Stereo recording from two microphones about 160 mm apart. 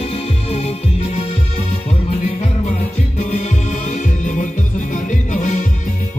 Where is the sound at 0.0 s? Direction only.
40° left (ahead or behind).